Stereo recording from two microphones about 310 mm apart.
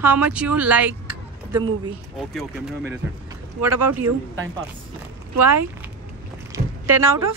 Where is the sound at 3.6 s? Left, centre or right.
Right.